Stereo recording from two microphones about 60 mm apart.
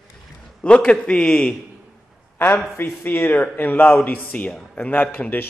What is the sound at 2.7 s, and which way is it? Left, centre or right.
Speech, left.